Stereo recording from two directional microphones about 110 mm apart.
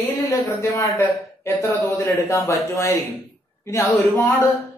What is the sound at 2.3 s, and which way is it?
Speech, 25° left (ahead or behind).